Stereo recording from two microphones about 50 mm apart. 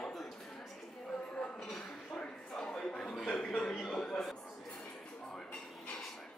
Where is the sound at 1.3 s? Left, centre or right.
Left.